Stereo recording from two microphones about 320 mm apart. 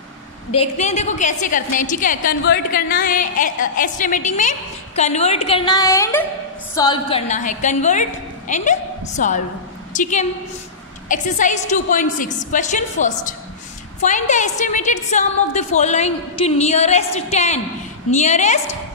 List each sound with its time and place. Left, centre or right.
0.5 s a woman's voice: centre